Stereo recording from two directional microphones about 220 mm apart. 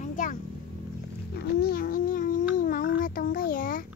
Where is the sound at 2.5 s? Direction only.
40° left (ahead or behind).